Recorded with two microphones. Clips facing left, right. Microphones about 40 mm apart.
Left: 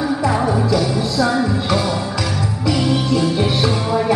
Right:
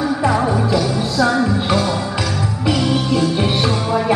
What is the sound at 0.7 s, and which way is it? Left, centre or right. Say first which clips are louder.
Music: right 1 dB; centre.